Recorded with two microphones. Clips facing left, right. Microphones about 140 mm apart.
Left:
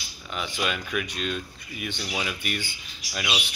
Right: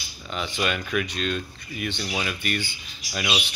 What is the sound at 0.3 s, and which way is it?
Speech, 5° left (ahead or behind).